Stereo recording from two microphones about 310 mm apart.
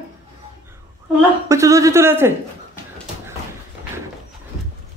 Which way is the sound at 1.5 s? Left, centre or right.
Centre.